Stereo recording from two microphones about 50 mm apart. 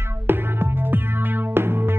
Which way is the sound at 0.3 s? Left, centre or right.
Right.